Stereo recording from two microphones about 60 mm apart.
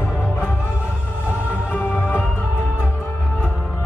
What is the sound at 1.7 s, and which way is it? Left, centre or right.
Music, left.